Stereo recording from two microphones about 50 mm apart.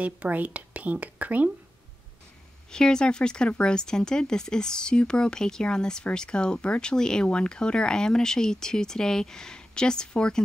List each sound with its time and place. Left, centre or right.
0.0 s speech: right
2.7 s speech: centre